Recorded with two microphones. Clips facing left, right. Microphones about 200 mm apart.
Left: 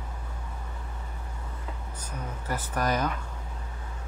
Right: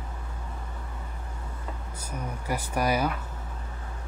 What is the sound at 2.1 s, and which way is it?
Speech, 10° right (ahead or behind).